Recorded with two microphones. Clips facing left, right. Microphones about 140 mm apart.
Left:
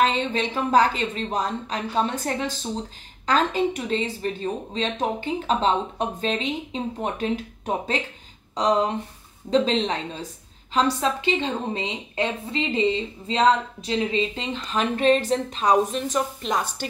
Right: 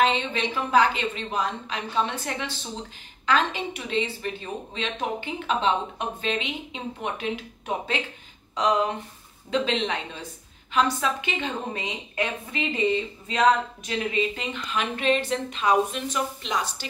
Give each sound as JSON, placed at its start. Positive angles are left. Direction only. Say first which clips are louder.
{"t": 0.0, "sound": "a woman's voice", "louder": "left 1 dB", "side_deg": 40}